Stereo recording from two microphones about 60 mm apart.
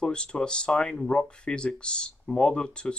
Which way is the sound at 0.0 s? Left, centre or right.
Centre.